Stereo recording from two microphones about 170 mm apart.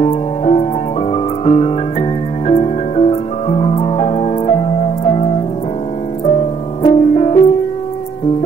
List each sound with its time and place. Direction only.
0.0 s music: 40° left (ahead or behind)
6.8 s music: 40° left (ahead or behind)